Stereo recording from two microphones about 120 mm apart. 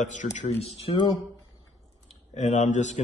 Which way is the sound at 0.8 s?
45° left (ahead or behind).